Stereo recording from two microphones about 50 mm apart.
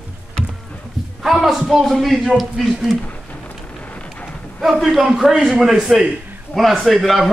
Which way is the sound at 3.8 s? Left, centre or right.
Left.